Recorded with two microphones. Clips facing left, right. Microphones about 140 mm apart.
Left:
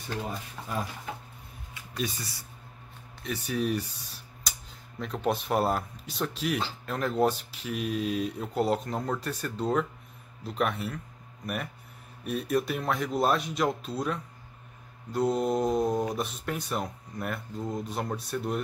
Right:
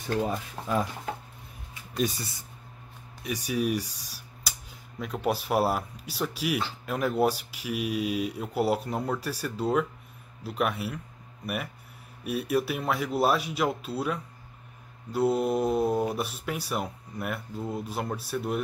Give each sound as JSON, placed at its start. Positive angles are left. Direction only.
{"t": 0.6, "sound": "speech", "side_deg": -40}
{"t": 2.0, "sound": "speech", "side_deg": -45}
{"t": 3.2, "sound": "speech", "side_deg": -10}